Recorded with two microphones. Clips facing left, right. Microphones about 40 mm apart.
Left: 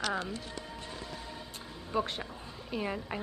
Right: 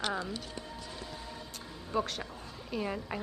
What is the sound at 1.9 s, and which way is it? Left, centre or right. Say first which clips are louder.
A woman's voice: even; centre.